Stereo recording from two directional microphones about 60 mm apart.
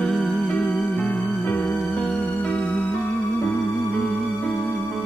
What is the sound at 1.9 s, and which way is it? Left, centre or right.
Music, centre.